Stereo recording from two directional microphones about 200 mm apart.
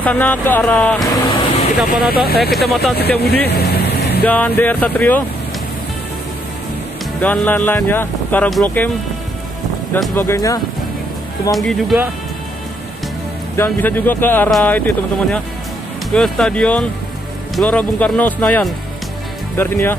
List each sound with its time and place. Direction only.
0.0 s speech: 10° left (ahead or behind)
1.3 s vehicle: 30° left (ahead or behind)
2.0 s speech: 50° left (ahead or behind)
2.5 s speech: centre (ahead or behind)
3.2 s speech: 55° left (ahead or behind)
4.2 s speech: 5° left (ahead or behind)
7.2 s speech: 10° left (ahead or behind)
9.9 s speech: centre (ahead or behind)
10.2 s speech: 15° left (ahead or behind)
11.5 s speech: centre (ahead or behind)
13.6 s speech: 10° left (ahead or behind)